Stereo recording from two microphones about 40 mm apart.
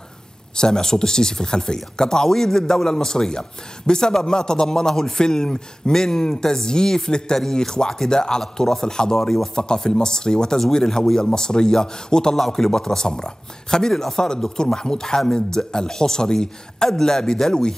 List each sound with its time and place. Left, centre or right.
0.6 s speech: centre
9.2 s speech: centre
9.6 s speech: centre